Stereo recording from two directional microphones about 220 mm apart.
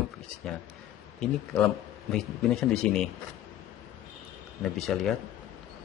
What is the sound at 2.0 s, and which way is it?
Speech, centre (ahead or behind).